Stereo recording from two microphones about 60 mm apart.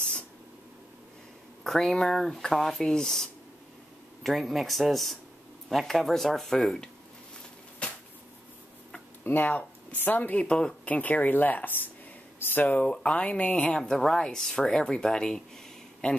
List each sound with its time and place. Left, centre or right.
1.6 s speech: centre
9.2 s speech: left
10.4 s speech: centre
12.8 s speech: centre